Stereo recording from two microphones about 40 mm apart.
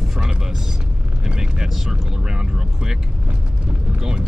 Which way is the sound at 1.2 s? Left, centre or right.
Centre.